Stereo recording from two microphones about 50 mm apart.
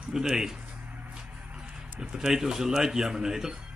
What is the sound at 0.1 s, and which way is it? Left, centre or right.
Speech, centre.